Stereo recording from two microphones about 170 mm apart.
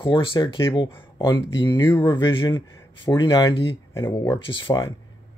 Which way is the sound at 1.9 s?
15° left (ahead or behind).